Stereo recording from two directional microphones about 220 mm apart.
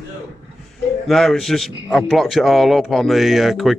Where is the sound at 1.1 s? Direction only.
Centre (ahead or behind).